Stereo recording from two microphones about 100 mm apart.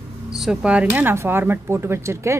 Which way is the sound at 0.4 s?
5° right (ahead or behind).